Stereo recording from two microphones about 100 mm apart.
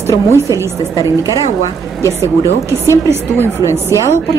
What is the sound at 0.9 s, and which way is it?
Speech, 35° left (ahead or behind).